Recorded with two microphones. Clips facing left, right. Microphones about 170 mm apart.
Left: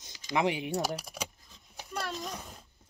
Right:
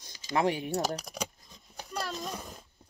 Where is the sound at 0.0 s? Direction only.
20° left (ahead or behind).